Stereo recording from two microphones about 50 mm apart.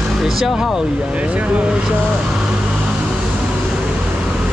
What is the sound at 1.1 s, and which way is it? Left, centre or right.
Speech, right.